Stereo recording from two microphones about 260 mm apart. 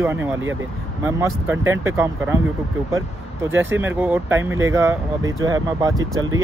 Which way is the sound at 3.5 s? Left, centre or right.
Centre.